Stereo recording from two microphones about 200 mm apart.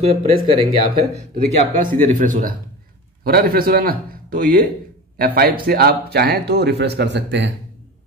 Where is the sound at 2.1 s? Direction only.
40° right (ahead or behind); by 7.5 s 60° right (ahead or behind).